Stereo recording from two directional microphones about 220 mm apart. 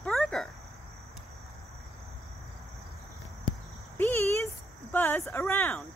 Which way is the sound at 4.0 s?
10° left (ahead or behind).